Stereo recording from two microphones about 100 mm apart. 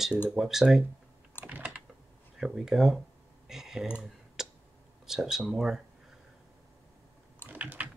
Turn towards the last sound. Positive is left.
turn(degrees=-15)  # may be behind; listen again after turning